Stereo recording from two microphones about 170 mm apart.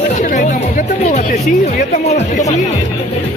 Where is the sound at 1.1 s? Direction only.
40° left (ahead or behind).